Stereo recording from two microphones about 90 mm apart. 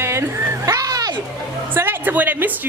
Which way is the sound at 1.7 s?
25° right (ahead or behind).